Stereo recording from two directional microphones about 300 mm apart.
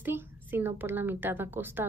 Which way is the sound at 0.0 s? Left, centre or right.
Centre.